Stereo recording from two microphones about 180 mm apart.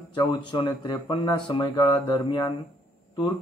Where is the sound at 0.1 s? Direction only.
25° left (ahead or behind).